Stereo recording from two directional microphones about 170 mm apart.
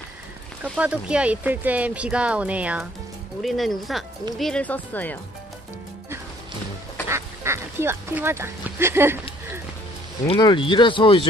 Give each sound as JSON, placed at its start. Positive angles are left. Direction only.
{"t": 0.7, "sound": "speech", "side_deg": -5}
{"t": 7.1, "sound": "speech", "side_deg": -15}
{"t": 10.2, "sound": "speech", "side_deg": 30}